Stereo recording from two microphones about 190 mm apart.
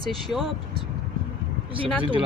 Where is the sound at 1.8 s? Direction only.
25° right (ahead or behind).